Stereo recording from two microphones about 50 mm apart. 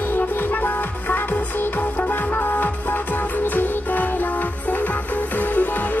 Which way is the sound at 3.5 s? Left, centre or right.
Left.